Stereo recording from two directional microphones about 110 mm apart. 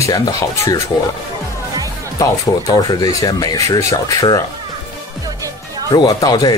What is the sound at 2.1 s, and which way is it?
Speech, 35° left (ahead or behind).